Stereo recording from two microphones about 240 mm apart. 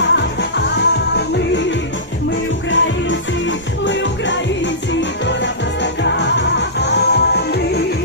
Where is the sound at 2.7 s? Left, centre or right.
Left.